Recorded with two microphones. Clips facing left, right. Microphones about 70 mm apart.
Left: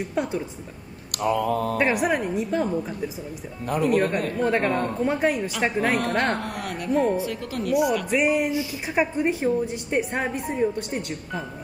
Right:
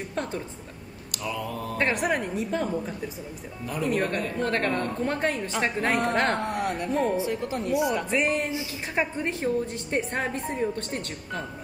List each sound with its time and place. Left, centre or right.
0.1 s a woman's voice: centre
1.1 s mantra: left
1.8 s a woman's voice: centre
3.6 s speech: left
3.9 s a woman's voice: centre
7.2 s speech: right
8.1 s a woman's voice: centre